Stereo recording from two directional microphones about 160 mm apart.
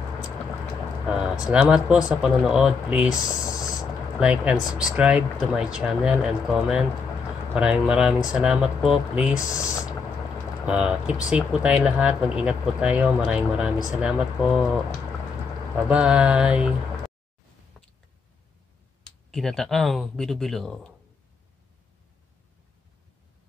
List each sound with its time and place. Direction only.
1.0 s speech: 5° right (ahead or behind)
3.6 s a sound: 5° right (ahead or behind)
4.9 s speech: 5° right (ahead or behind)
9.4 s speech: 20° left (ahead or behind)
10.6 s speech: 10° right (ahead or behind)
15.9 s speech: 5° right (ahead or behind)
17.8 s a sound: centre (ahead or behind)
19.3 s speech: centre (ahead or behind)